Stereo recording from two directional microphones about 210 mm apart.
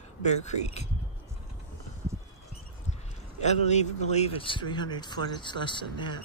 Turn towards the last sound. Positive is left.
turn(degrees=20)  # may be behind; listen again after turning